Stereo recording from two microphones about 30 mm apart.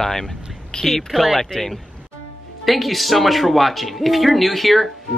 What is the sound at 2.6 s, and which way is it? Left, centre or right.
Speech, centre.